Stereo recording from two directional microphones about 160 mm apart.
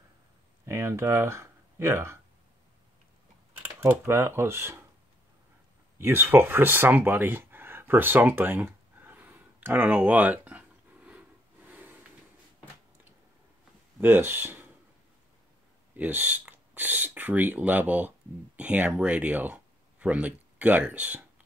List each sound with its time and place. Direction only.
0.7 s speech: 15° right (ahead or behind)
3.6 s speech: 15° right (ahead or behind)
5.9 s speech: 15° right (ahead or behind)
8.6 s a sound: 10° right (ahead or behind)
14.0 s speech: 15° right (ahead or behind)
16.0 s speech: 10° right (ahead or behind)